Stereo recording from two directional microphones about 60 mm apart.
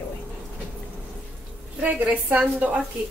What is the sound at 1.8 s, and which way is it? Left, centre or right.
Speech, right.